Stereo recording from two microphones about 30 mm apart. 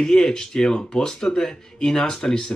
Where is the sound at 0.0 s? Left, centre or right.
Left.